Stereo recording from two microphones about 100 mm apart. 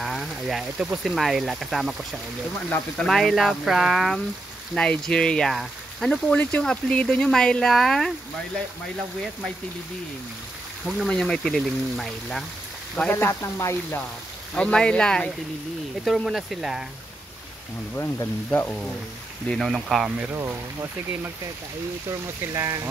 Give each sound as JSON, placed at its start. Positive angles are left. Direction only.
{"t": 0.0, "sound": "speech", "side_deg": 0}
{"t": 3.0, "sound": "speech", "side_deg": 5}
{"t": 11.1, "sound": "speech", "side_deg": 5}
{"t": 12.9, "sound": "speech", "side_deg": 15}
{"t": 13.3, "sound": "speech", "side_deg": 30}
{"t": 14.5, "sound": "speech", "side_deg": 10}
{"t": 16.0, "sound": "speech", "side_deg": 0}
{"t": 17.9, "sound": "speech", "side_deg": 25}
{"t": 19.5, "sound": "speech", "side_deg": 0}
{"t": 20.3, "sound": "speech", "side_deg": -25}
{"t": 22.5, "sound": "speech", "side_deg": -35}